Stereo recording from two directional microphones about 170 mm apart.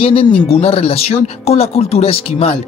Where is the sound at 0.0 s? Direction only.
30° left (ahead or behind).